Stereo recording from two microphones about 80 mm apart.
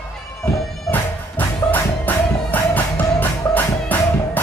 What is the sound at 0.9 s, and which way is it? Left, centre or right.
Music, left.